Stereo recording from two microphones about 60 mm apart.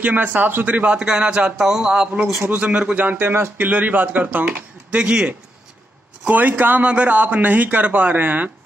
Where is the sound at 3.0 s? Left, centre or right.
Right.